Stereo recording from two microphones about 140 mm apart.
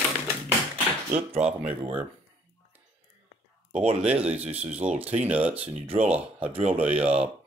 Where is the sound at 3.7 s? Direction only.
45° right (ahead or behind).